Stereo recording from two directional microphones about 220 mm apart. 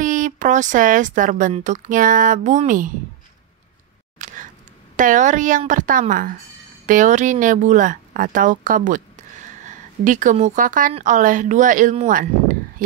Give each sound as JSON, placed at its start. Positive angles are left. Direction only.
{"t": 0.0, "sound": "a woman's voice", "side_deg": -35}
{"t": 4.2, "sound": "a sound", "side_deg": -35}
{"t": 4.9, "sound": "a woman's voice", "side_deg": -35}